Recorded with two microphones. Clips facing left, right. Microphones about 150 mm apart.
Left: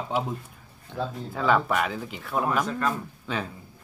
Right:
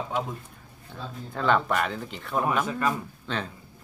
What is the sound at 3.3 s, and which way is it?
Speech, 5° left (ahead or behind).